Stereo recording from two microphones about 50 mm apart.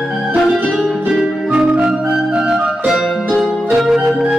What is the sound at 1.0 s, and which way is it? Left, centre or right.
Music, centre.